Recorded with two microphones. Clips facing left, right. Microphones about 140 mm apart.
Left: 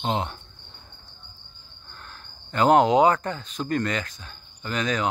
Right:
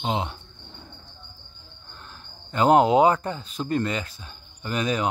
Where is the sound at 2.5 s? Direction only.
5° right (ahead or behind).